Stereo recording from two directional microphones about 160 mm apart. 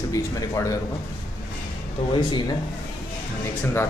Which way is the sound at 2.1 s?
25° left (ahead or behind).